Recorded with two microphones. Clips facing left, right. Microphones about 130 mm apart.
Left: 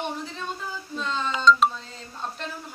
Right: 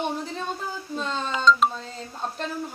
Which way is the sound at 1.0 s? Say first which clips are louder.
Even; 45° right (ahead or behind).